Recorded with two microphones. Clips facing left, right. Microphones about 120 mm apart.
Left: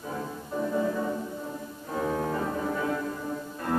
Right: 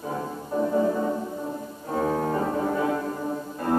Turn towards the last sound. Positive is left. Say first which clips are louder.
# right 5 dB
turn(degrees=-30)  # may be behind; listen again after turning